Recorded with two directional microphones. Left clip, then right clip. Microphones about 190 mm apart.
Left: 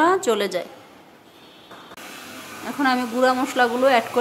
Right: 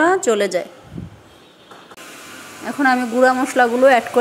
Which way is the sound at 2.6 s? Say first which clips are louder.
Right 5 dB; 15° right (ahead or behind).